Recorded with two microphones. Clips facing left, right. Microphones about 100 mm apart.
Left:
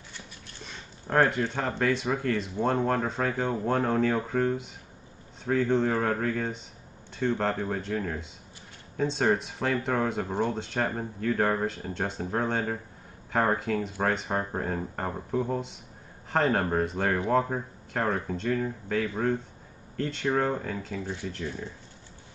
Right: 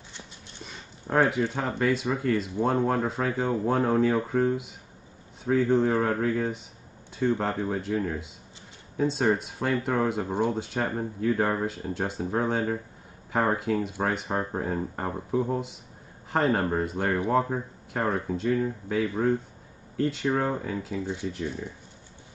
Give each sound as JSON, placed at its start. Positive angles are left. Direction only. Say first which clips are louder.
{"t": 1.1, "sound": "speech", "louder": "right 1 dB", "side_deg": -5}
{"t": 18.0, "sound": "speech", "louder": "right 2 dB", "side_deg": -10}
{"t": 20.9, "sound": "speech", "louder": "right 3 dB", "side_deg": -20}